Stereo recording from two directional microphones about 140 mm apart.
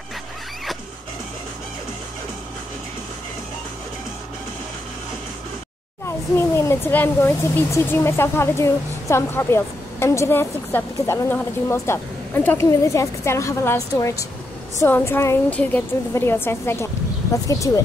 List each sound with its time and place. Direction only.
6.0 s a child's voice: 20° left (ahead or behind)